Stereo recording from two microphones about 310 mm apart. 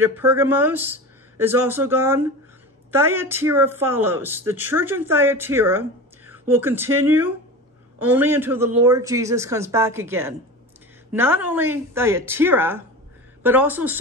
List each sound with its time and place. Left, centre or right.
0.0 s a woman's voice: centre